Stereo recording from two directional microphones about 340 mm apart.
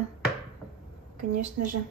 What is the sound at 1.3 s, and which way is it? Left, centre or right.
Speech, right.